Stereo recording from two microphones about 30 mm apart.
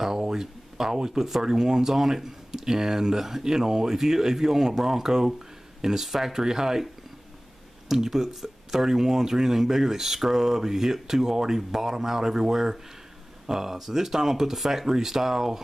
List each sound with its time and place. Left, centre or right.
0.0 s a sound: centre
1.4 s speech: right
6.0 s speech: centre
6.3 s speech: centre
7.9 s speech: centre